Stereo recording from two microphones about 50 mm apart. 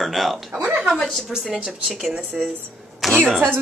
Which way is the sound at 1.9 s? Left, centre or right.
Centre.